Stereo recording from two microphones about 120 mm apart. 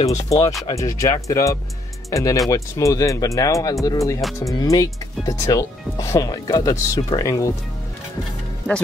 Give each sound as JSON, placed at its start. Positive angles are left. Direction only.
{"t": 0.3, "sound": "speech", "side_deg": 25}